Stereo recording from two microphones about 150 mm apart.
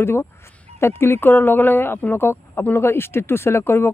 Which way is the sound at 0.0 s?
15° left (ahead or behind).